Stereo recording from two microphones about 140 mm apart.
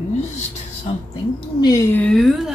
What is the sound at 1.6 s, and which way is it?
Speech, 25° left (ahead or behind).